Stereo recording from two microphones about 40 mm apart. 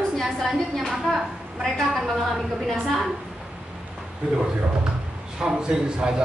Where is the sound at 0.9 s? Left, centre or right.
Centre.